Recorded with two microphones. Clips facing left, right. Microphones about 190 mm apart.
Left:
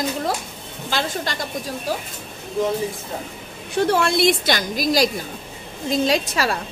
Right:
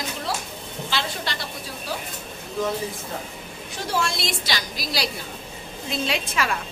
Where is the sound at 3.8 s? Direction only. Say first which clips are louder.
Left 9 dB; 60° left (ahead or behind); by 6.6 s 40° left (ahead or behind).